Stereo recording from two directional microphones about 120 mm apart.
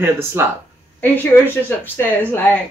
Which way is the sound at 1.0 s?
15° left (ahead or behind).